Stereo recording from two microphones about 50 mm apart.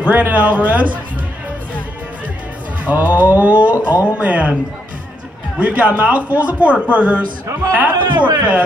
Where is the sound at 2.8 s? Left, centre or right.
Right.